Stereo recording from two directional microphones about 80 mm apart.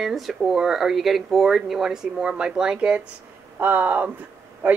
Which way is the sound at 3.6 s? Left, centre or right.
Right.